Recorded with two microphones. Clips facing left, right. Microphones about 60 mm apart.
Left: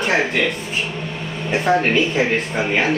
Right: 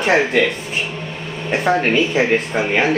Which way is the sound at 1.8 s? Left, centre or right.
Centre.